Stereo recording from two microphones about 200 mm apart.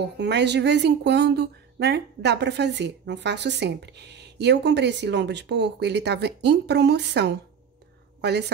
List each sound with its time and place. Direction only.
0.2 s speech: 60° right (ahead or behind)